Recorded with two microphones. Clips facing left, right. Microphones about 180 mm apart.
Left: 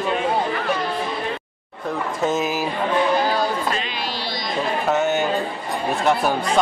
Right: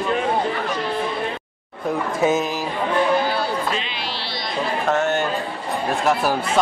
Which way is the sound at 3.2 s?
45° left (ahead or behind).